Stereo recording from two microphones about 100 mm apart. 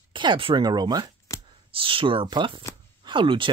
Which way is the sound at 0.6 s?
45° right (ahead or behind).